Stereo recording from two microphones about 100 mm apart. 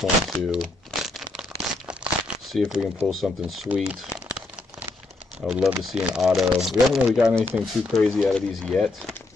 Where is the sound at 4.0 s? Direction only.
5° right (ahead or behind).